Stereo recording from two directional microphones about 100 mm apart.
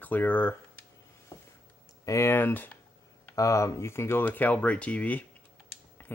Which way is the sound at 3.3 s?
35° left (ahead or behind).